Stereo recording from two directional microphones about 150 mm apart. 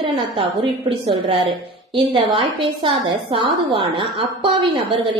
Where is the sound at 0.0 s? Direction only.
35° right (ahead or behind).